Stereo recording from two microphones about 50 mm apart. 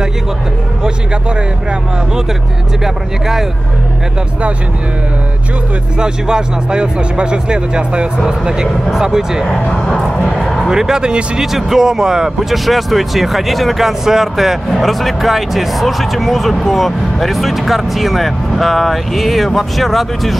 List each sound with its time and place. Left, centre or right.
2.8 s speech: centre
5.9 s speech: centre
9.5 s music: centre
10.7 s speech: centre